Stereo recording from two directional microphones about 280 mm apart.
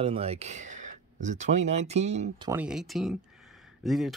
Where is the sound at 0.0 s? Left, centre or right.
Right.